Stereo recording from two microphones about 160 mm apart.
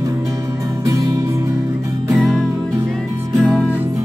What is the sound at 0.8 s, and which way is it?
Music, 20° right (ahead or behind).